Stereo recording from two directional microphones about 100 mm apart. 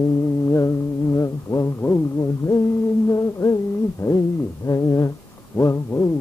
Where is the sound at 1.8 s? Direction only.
25° left (ahead or behind).